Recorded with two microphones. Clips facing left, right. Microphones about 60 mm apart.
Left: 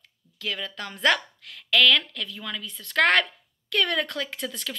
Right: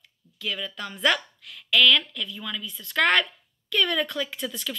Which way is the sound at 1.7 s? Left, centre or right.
Left.